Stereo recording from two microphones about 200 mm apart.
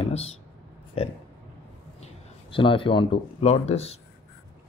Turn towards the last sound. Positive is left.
turn(degrees=30)  # may be behind; listen again after turning